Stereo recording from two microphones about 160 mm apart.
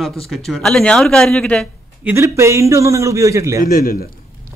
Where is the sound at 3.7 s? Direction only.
65° left (ahead or behind).